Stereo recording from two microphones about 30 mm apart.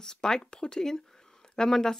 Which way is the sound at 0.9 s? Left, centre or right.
Centre.